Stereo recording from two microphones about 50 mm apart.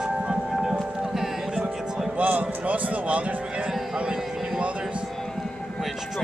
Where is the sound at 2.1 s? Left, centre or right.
Right.